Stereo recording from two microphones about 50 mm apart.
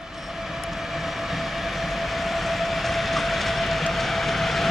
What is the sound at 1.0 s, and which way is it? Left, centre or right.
Train, centre.